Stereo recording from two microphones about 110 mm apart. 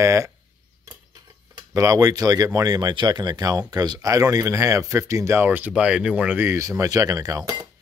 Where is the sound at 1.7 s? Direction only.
30° right (ahead or behind).